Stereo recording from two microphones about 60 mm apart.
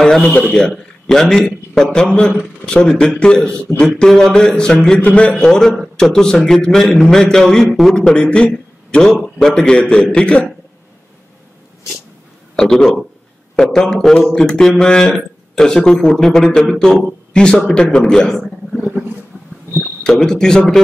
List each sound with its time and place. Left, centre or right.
0.2 s a man's voice: left
0.6 s a man's voice: centre
12.5 s speech: centre
20.0 s speech: centre